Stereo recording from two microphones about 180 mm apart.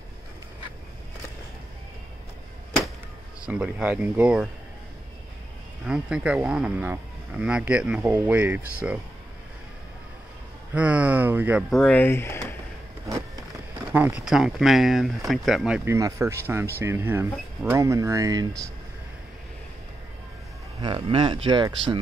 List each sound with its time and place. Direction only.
3.4 s speech: 5° right (ahead or behind)
5.9 s speech: 5° right (ahead or behind)
10.7 s speech: 5° right (ahead or behind)
11.7 s speech: 5° left (ahead or behind)
13.9 s speech: 5° right (ahead or behind)
20.8 s speech: 25° right (ahead or behind)